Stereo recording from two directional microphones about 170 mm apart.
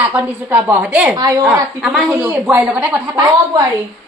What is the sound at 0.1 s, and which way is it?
A woman's voice, 10° right (ahead or behind).